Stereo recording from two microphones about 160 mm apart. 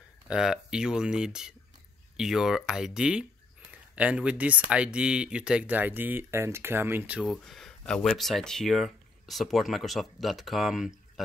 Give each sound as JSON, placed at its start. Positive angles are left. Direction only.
{"t": 0.3, "sound": "speech", "side_deg": -5}